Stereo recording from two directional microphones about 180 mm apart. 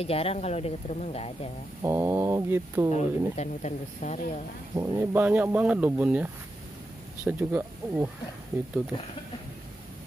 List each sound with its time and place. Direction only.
0.0 s speech: 35° left (ahead or behind)
1.8 s speech: 15° right (ahead or behind)
2.9 s speech: 40° left (ahead or behind)
4.7 s speech: 10° right (ahead or behind)